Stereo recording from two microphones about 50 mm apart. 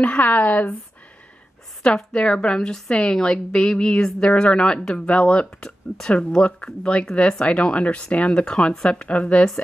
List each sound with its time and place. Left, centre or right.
0.0 s speech: left
2.0 s a woman's voice: centre